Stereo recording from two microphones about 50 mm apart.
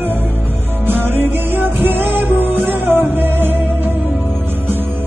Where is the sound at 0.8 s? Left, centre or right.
Right.